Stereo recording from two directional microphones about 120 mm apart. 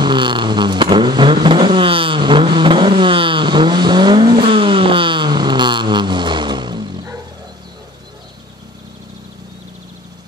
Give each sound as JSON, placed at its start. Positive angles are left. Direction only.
{"t": 0.0, "sound": "vehicle", "side_deg": -40}